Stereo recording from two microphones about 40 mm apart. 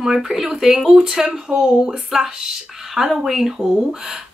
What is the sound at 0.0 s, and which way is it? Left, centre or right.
A woman's voice, centre.